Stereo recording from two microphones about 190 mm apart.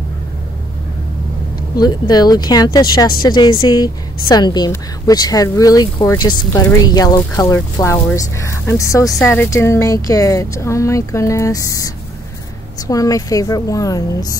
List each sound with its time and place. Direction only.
1.8 s a woman's voice: 20° left (ahead or behind)